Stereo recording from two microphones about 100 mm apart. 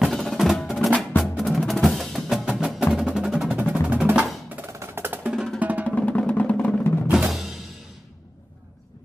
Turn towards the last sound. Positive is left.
turn(degrees=0)  # may be behind; listen again after turning